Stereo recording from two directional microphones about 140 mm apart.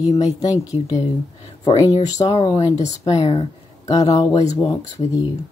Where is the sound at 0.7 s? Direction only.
45° left (ahead or behind).